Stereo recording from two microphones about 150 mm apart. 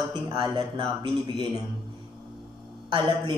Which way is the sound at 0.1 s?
30° right (ahead or behind).